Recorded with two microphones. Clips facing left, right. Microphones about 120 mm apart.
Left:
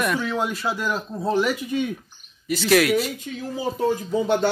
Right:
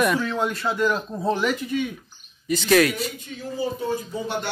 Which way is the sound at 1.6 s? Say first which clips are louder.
Left 1 dB; 15° left (ahead or behind).